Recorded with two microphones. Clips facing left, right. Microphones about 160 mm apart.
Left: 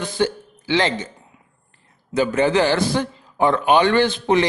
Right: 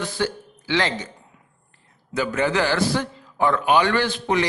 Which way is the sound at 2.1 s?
25° left (ahead or behind).